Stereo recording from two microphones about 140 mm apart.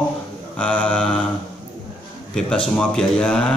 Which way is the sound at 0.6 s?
10° left (ahead or behind).